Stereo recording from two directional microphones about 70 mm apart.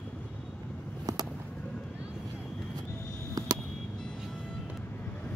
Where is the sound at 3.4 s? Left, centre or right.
Right.